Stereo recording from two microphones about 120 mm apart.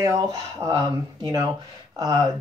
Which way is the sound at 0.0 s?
30° right (ahead or behind).